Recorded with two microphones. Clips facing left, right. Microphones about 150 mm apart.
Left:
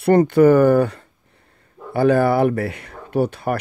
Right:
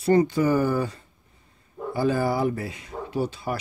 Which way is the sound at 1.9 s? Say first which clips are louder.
Left 8 dB; 60° left (ahead or behind).